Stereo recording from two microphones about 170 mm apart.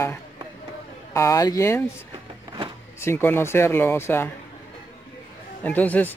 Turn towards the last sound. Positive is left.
turn(degrees=10)  # may be behind; listen again after turning